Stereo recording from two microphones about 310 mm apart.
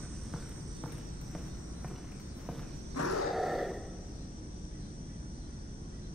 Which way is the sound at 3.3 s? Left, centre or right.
Centre.